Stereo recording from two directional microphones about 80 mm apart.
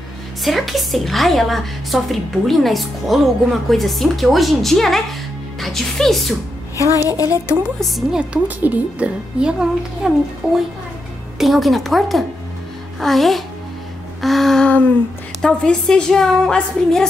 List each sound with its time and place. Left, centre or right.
0.4 s a woman's voice: centre
6.8 s a woman's voice: left
7.8 s a woman's voice: centre
8.2 s a woman's voice: centre